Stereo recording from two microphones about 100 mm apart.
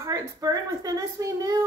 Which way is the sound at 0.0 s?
35° right (ahead or behind).